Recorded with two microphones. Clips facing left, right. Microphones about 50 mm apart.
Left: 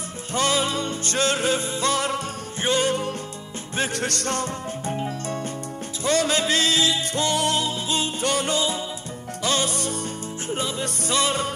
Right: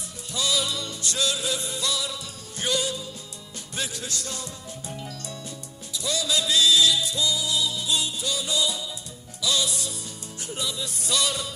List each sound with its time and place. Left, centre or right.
0.3 s music: left
8.5 s music: left